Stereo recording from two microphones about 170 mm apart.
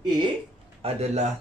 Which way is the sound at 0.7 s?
35° right (ahead or behind).